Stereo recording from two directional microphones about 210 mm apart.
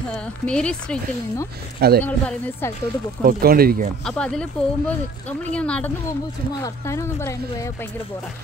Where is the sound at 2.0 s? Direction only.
10° left (ahead or behind).